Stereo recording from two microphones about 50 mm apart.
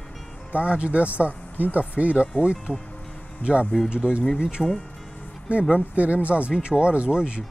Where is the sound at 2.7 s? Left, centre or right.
Left.